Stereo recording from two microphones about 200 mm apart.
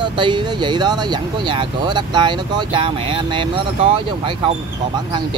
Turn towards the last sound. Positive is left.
turn(degrees=-25)  # may be behind; listen again after turning